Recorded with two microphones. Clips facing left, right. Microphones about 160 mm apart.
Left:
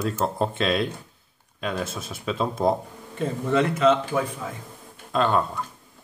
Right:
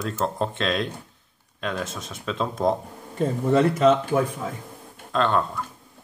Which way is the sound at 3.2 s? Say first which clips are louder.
Right 3 dB; 40° right (ahead or behind).